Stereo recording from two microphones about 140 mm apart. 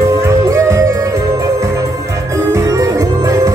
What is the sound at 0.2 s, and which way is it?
Music, 20° right (ahead or behind).